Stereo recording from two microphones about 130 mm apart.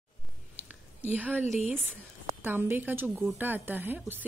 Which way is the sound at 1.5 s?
60° left (ahead or behind).